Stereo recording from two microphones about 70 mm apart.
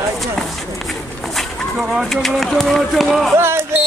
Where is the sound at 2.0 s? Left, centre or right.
Centre.